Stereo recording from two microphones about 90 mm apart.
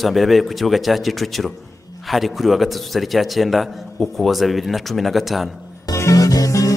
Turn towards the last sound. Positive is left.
turn(degrees=40)  # may be behind; listen again after turning